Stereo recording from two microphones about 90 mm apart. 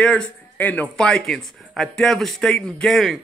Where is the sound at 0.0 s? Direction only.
10° left (ahead or behind).